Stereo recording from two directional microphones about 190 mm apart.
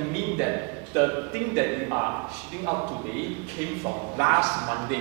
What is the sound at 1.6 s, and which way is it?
Speech, 15° right (ahead or behind).